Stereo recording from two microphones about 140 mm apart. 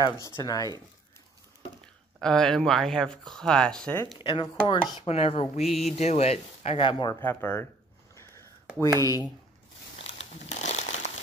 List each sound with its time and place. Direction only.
0.0 s speech: 25° left (ahead or behind)
2.1 s speech: 5° left (ahead or behind)
4.2 s speech: 35° left (ahead or behind)
5.6 s speech: centre (ahead or behind)
5.9 s speech: 50° left (ahead or behind)
6.8 s speech: 35° left (ahead or behind)
7.2 s speech: 15° left (ahead or behind)
9.0 s speech: 25° left (ahead or behind)
10.0 s crumpling: 50° left (ahead or behind)